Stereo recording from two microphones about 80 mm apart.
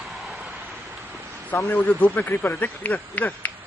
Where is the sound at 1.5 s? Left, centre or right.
Left.